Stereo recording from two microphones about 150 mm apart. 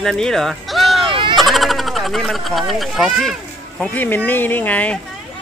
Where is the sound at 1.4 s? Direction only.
Centre (ahead or behind).